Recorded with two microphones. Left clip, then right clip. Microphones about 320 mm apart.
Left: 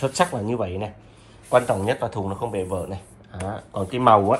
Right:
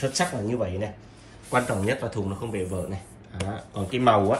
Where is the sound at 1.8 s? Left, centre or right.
Left.